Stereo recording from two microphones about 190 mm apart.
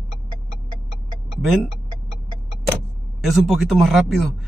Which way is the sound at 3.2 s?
Centre (ahead or behind).